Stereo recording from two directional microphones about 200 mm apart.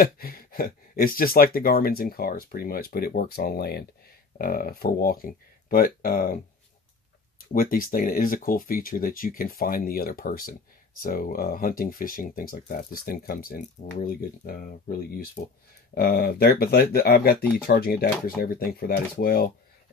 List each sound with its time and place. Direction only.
0.0 s speech: 50° left (ahead or behind)